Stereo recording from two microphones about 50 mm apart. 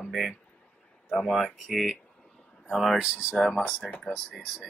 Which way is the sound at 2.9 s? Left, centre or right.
Centre.